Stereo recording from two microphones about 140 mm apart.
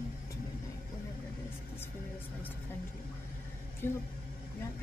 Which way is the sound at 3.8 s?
15° left (ahead or behind).